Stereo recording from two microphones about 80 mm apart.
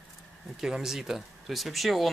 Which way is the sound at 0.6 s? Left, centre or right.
Centre.